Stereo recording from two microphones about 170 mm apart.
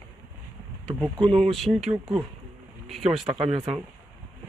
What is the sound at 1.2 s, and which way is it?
Speech, 5° left (ahead or behind).